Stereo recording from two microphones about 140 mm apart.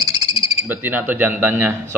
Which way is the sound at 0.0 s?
30° right (ahead or behind).